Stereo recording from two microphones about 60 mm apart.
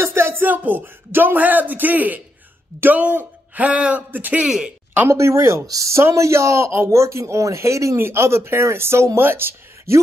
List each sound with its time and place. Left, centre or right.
0.0 s a man's voice: right
4.4 s speech: centre
5.0 s speech: right
5.7 s speech: right
8.0 s speech: right